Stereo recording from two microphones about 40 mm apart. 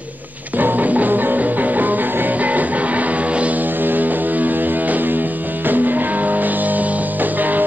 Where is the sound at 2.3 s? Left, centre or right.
Right.